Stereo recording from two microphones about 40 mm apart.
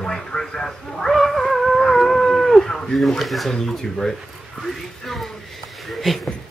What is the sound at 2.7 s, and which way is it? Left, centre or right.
Speech, centre.